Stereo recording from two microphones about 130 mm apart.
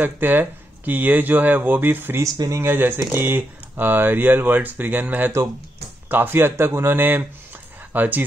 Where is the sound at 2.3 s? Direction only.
30° right (ahead or behind).